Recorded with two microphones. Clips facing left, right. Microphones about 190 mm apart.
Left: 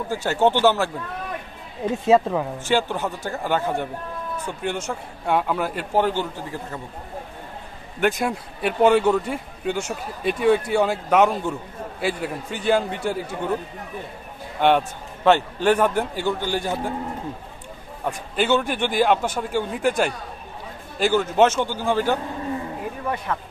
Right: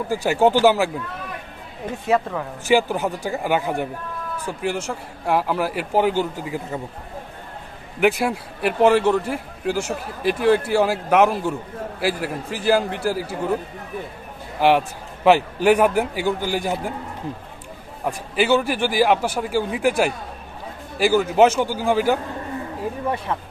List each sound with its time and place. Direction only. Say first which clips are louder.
0.1 s a man's voice: right 2 dB; 10° right (ahead or behind)
2.0 s speech: left 3 dB; 20° left (ahead or behind)
2.6 s a man's voice: right 7 dB; 10° right (ahead or behind)
8.0 s a man's voice: right 3 dB; 5° right (ahead or behind)
14.6 s a man's voice: right 1 dB; 5° right (ahead or behind)
18.0 s a man's voice: right 2 dB; 5° right (ahead or behind)